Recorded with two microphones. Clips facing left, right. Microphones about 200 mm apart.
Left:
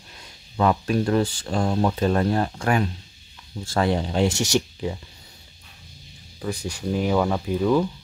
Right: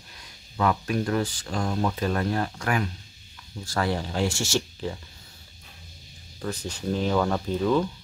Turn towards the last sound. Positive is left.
turn(degrees=10)  # may be behind; listen again after turning